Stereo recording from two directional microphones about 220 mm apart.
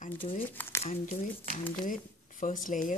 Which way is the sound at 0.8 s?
30° left (ahead or behind).